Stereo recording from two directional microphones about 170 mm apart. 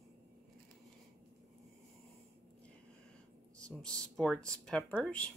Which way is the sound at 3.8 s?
5° left (ahead or behind).